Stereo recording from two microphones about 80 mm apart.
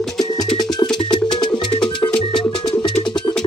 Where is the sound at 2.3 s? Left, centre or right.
Left.